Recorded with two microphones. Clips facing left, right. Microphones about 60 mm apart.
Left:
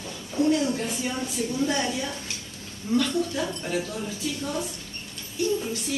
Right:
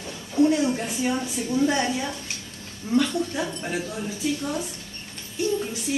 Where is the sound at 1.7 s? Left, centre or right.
Centre.